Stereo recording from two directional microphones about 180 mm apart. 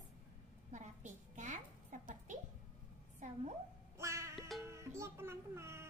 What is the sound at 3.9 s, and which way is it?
Music, 15° right (ahead or behind).